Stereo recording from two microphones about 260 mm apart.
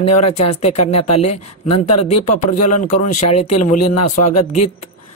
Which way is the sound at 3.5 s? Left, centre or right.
Left.